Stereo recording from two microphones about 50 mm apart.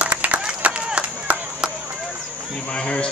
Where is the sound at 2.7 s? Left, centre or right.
Centre.